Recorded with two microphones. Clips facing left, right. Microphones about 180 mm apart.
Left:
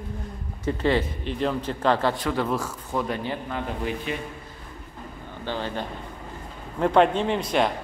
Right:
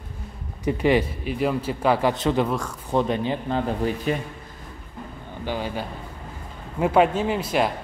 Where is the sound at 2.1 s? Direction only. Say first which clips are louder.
Right 4 dB; 25° right (ahead or behind).